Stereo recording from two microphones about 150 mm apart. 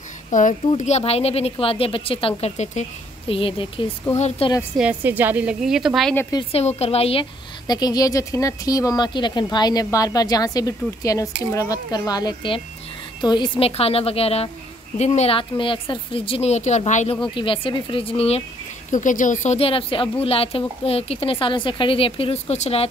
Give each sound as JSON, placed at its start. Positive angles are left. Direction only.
{"t": 0.3, "sound": "speech", "side_deg": 60}
{"t": 3.3, "sound": "a woman's voice", "side_deg": 40}
{"t": 4.7, "sound": "a woman's voice", "side_deg": -10}
{"t": 6.8, "sound": "a woman's voice", "side_deg": 40}
{"t": 7.6, "sound": "a woman's voice", "side_deg": 25}
{"t": 17.2, "sound": "a woman's voice", "side_deg": 35}
{"t": 18.9, "sound": "a woman's voice", "side_deg": 60}